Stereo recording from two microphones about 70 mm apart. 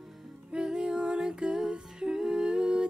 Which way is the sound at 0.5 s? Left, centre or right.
Centre.